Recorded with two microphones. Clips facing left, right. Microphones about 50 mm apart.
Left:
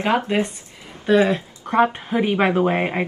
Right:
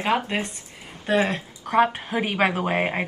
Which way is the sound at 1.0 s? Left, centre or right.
Right.